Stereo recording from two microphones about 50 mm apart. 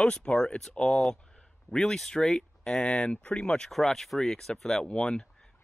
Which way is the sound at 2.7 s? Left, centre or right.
Left.